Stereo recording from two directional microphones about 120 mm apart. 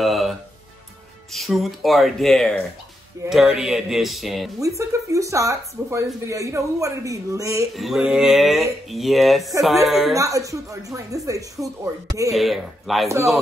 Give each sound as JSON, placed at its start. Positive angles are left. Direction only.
{"t": 0.0, "sound": "music", "side_deg": 0}
{"t": 1.3, "sound": "speech", "side_deg": 0}
{"t": 4.6, "sound": "speech", "side_deg": -25}
{"t": 7.7, "sound": "speech", "side_deg": 0}
{"t": 10.1, "sound": "speech", "side_deg": -25}
{"t": 12.4, "sound": "speech", "side_deg": 0}